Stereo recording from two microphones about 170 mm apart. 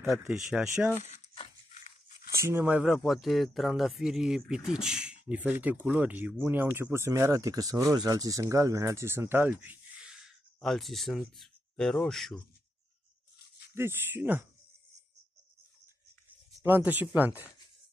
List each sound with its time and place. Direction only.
0.2 s speech: 5° right (ahead or behind)
0.9 s speech: 40° left (ahead or behind)
1.7 s crunch: 45° left (ahead or behind)
2.3 s speech: 15° right (ahead or behind); by 12.4 s centre (ahead or behind)
13.7 s speech: 15° right (ahead or behind)
16.6 s speech: 10° right (ahead or behind)